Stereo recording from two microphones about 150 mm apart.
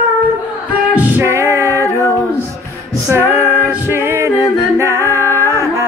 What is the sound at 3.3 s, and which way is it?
Singing, 20° right (ahead or behind).